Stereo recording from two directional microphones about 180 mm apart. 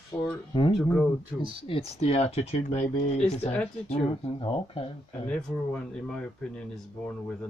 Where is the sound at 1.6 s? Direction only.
30° left (ahead or behind).